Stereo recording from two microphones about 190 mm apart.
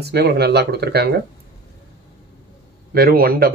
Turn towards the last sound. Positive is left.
turn(degrees=-50)  # may be behind; listen again after turning